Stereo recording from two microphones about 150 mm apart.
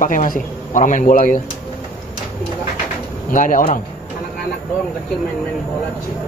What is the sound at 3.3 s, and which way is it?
Speech, 60° left (ahead or behind).